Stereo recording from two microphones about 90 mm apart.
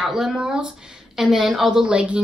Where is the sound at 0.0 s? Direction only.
5° right (ahead or behind).